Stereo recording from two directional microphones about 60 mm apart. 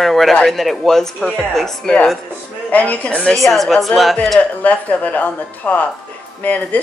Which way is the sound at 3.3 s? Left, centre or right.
Centre.